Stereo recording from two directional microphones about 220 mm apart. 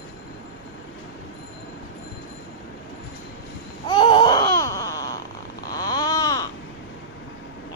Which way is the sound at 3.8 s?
20° left (ahead or behind).